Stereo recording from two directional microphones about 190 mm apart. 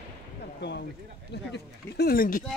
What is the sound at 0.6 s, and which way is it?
Speech, 65° left (ahead or behind).